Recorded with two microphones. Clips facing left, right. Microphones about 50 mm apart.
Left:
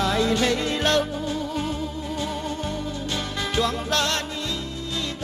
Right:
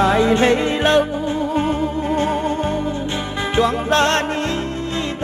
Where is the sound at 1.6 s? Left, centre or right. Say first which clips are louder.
Right 9 dB; right.